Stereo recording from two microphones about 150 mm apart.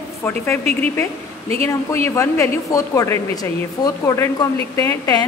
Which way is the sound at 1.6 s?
20° left (ahead or behind).